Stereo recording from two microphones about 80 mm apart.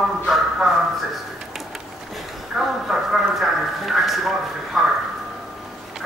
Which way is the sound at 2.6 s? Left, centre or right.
Centre.